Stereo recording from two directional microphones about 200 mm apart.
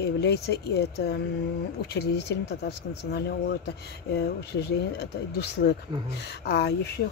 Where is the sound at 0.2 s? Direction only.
55° left (ahead or behind).